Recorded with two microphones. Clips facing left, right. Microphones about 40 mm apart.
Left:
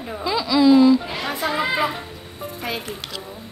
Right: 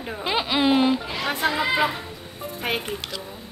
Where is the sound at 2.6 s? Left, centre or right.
Right.